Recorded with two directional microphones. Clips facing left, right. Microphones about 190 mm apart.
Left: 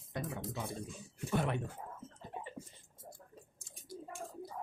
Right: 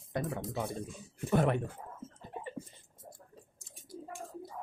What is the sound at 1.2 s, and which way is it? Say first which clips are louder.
Speech: right 6 dB; 50° right (ahead or behind).